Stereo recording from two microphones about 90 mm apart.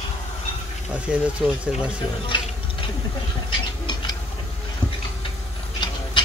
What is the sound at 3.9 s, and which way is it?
Tick-tock, 55° left (ahead or behind).